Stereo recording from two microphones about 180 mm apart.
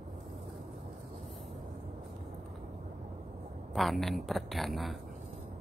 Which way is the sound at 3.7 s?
Centre (ahead or behind).